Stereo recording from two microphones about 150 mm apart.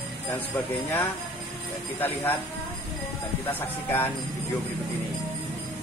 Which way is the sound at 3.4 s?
15° left (ahead or behind).